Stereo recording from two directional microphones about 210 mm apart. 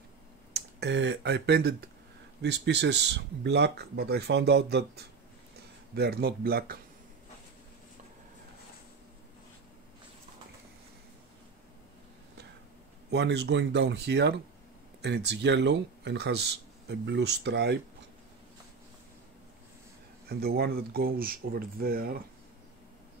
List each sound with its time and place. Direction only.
0.6 s speech: 55° right (ahead or behind)
13.1 s speech: 55° right (ahead or behind)
20.2 s speech: 45° right (ahead or behind)